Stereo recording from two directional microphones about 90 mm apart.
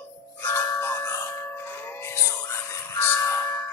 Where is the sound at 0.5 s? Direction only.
30° left (ahead or behind).